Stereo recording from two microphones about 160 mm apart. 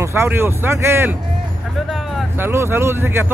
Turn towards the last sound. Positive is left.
turn(degrees=-15)  # may be behind; listen again after turning